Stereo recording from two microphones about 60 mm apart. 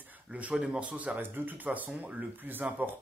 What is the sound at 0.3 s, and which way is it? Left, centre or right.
Speech, right.